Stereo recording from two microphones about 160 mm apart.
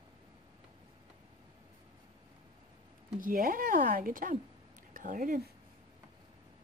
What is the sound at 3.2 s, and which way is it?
A woman's voice, 60° right (ahead or behind).